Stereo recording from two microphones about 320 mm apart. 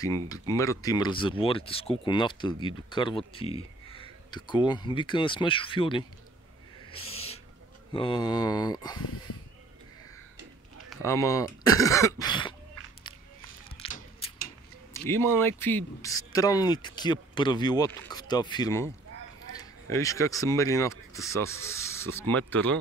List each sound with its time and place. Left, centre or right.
0.0 s speech: centre
6.9 s owl: centre
7.9 s speech: centre
10.9 s speech: centre
13.8 s a sound: left
15.0 s speech: centre